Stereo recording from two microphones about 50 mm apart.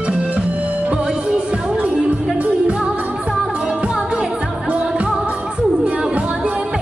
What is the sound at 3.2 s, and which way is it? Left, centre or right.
Music, centre.